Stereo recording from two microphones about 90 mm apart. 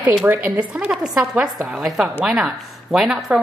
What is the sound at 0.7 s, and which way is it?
A woman's voice, 5° right (ahead or behind).